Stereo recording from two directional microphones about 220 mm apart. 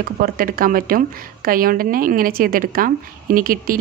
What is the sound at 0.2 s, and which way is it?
A woman's voice, 40° right (ahead or behind).